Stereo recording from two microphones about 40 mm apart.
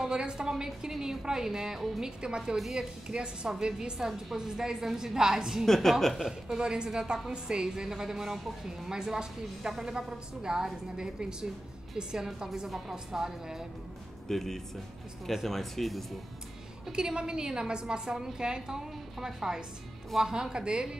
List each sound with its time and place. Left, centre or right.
0.0 s a woman's voice: right
5.7 s speech: centre
6.1 s a woman's voice: centre
12.6 s speech: centre
12.9 s a woman's voice: centre
14.3 s speech: centre
16.9 s a woman's voice: right